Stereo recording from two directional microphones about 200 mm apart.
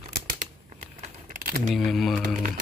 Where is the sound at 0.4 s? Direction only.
40° right (ahead or behind).